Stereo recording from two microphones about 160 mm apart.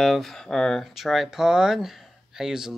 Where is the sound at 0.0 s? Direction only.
Centre (ahead or behind).